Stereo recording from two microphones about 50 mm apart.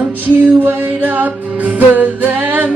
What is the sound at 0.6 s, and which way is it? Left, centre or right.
Music, right.